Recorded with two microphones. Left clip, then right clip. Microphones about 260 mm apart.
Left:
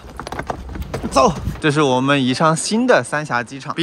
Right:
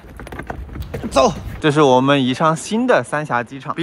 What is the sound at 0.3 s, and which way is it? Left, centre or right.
Clip-clop, left.